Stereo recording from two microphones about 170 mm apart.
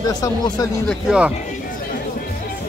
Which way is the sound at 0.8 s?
5° right (ahead or behind).